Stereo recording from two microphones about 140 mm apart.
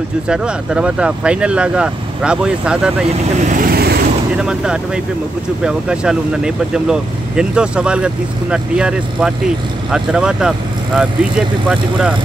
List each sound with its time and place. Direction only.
0.3 s speech: 5° right (ahead or behind)
3.4 s speech: 85° right
4.4 s speech: 5° right (ahead or behind)